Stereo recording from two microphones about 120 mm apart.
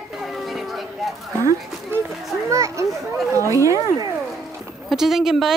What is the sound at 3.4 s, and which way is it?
Speech, 25° right (ahead or behind).